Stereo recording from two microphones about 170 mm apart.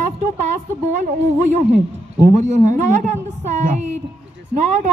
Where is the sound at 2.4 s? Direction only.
45° right (ahead or behind).